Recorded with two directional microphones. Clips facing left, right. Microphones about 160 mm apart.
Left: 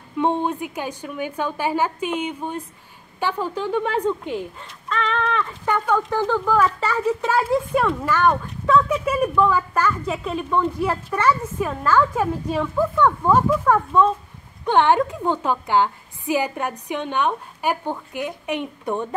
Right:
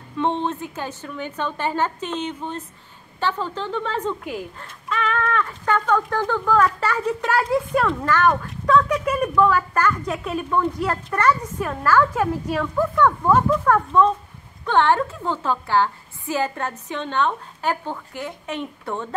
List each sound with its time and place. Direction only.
0.2 s a woman's voice: 15° left (ahead or behind)
4.8 s a sound: 5° right (ahead or behind)
5.4 s a woman's voice: 10° left (ahead or behind)
10.6 s a woman's voice: 10° left (ahead or behind)
11.8 s a woman's voice: 15° left (ahead or behind)